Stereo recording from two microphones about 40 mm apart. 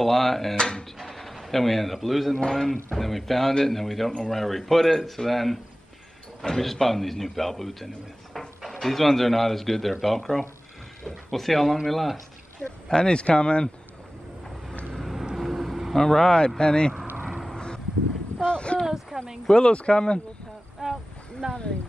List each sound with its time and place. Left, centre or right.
0.0 s speech: centre
0.6 s speech: left
0.9 s a sound: centre
2.3 s a man's voice: centre
12.8 s speech: centre
15.3 s vehicle: centre
15.9 s speech: centre
18.4 s a sound: left
19.1 s a sound: right
19.4 s speech: left
20.8 s boat: centre